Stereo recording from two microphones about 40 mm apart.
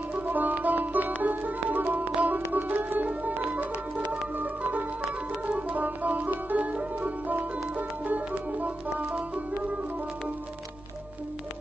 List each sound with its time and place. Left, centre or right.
0.1 s music: right